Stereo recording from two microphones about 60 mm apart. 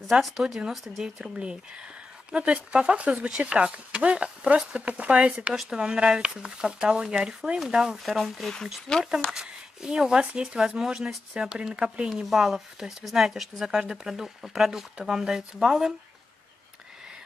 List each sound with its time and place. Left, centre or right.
0.1 s speech: centre
1.2 s speech: centre
8.9 s speech: centre
9.3 s speech: centre
11.3 s speech: centre
12.1 s speech: centre